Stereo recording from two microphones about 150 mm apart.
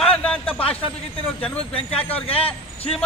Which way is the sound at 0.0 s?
10° left (ahead or behind).